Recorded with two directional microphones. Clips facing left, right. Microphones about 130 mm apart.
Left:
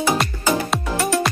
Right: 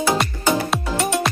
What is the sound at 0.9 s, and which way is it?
Music, 20° right (ahead or behind).